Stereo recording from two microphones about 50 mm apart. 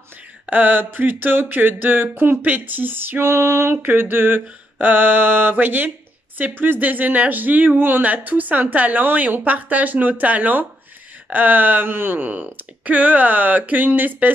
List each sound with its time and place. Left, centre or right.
0.5 s mantra: right
3.8 s mantra: right
6.6 s speech: right